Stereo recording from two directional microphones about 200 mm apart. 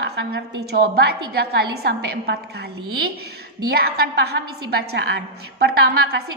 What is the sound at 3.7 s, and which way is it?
A woman's voice, 50° right (ahead or behind).